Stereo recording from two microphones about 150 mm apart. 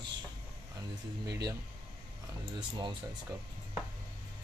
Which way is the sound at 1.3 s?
25° right (ahead or behind).